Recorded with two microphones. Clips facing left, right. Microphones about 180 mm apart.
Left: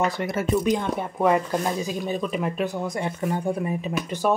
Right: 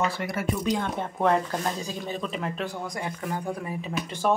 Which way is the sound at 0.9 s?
5° left (ahead or behind).